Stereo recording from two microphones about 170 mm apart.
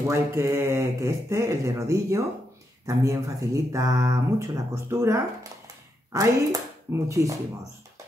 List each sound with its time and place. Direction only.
0.1 s speech: 15° right (ahead or behind)